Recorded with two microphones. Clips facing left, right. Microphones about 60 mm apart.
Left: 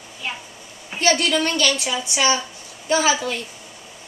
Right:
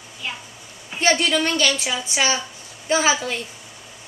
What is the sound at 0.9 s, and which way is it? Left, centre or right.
Speech, right.